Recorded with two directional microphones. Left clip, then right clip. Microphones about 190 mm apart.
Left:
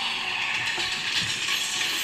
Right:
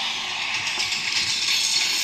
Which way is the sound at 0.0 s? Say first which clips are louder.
Right 1 dB; centre (ahead or behind).